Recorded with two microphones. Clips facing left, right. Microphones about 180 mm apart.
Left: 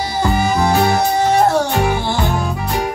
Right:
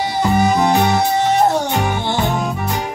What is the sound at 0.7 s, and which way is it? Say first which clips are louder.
Music: left 1 dB; centre (ahead or behind).